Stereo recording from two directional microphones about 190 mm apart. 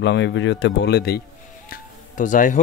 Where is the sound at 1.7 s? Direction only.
40° left (ahead or behind).